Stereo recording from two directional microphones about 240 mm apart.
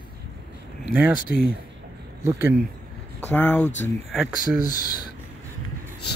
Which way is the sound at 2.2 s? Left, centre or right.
Centre.